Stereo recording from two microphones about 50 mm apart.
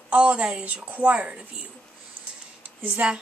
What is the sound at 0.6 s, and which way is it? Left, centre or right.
Speech, right.